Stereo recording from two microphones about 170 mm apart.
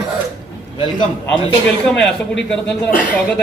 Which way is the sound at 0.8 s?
30° left (ahead or behind).